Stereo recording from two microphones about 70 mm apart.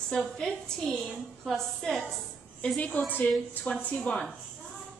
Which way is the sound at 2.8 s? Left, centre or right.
Left.